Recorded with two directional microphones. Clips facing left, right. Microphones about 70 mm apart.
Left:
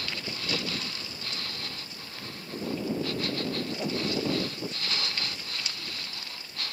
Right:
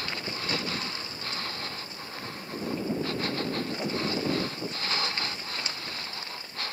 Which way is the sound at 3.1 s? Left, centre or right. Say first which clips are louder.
Right 1 dB; right.